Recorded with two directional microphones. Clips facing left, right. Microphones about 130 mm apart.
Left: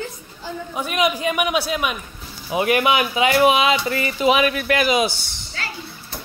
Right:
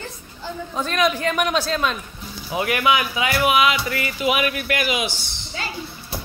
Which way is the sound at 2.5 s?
25° left (ahead or behind).